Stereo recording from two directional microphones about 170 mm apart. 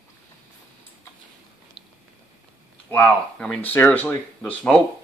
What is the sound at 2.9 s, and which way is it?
Speech, 5° left (ahead or behind).